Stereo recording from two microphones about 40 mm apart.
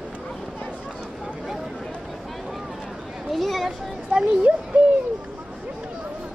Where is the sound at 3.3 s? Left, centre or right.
Centre.